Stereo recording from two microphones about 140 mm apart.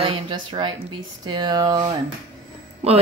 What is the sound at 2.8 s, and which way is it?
Speech, 50° right (ahead or behind).